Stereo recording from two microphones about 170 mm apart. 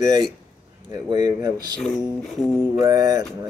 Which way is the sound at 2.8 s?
20° right (ahead or behind).